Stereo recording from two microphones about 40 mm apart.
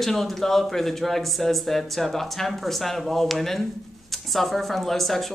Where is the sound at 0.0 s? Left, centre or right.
Centre.